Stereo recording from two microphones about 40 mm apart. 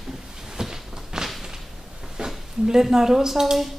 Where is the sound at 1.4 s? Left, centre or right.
Centre.